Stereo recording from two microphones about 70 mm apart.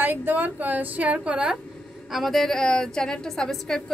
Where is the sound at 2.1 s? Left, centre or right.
Centre.